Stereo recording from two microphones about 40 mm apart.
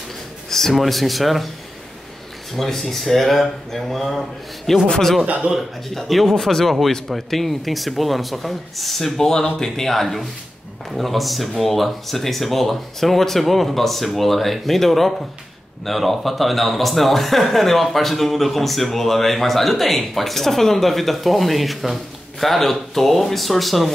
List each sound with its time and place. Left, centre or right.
0.5 s speech: centre
2.5 s a man's voice: centre
5.2 s a man's voice: right
5.9 s speech: centre